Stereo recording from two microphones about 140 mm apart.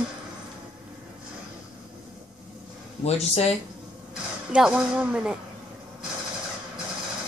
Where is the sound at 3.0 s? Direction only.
50° left (ahead or behind).